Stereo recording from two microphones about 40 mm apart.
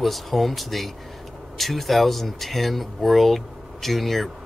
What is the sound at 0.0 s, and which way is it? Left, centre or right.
A man's voice, centre.